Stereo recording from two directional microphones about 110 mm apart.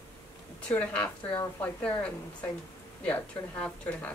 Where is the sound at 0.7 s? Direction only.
10° left (ahead or behind).